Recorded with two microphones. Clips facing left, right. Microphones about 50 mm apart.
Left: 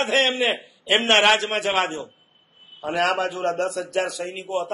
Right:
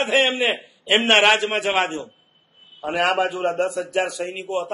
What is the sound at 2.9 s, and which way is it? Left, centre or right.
A man's voice, centre.